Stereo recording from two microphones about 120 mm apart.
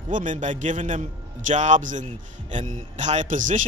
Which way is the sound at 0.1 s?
90° right.